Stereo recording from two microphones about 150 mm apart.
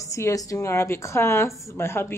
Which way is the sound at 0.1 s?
20° left (ahead or behind).